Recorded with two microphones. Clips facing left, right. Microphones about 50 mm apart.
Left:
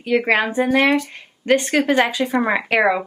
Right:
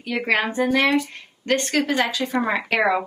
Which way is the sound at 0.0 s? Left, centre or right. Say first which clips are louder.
Left 4 dB; centre.